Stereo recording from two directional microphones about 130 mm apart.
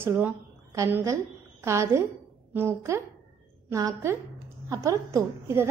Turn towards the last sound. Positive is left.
turn(degrees=-20)  # may be behind; listen again after turning